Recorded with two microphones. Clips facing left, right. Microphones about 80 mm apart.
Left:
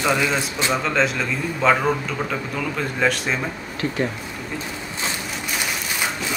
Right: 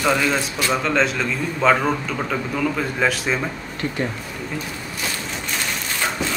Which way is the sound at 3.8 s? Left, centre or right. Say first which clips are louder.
Left 1 dB; centre.